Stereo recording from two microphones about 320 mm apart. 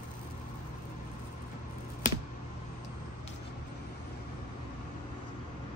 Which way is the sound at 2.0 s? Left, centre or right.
Left.